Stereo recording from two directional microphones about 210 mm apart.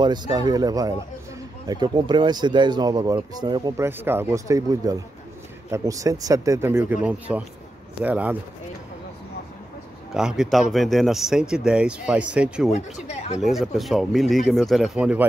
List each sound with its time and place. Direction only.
0.0 s a man's voice: 20° right (ahead or behind)
10.1 s speech: centre (ahead or behind)
13.1 s speech: 30° left (ahead or behind)
13.4 s speech: centre (ahead or behind)